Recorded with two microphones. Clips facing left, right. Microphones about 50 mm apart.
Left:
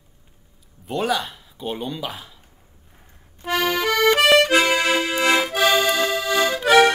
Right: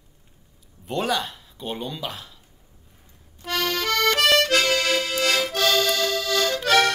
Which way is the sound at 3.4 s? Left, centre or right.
Centre.